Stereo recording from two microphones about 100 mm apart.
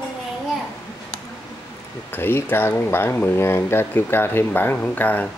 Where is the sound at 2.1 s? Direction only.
20° left (ahead or behind).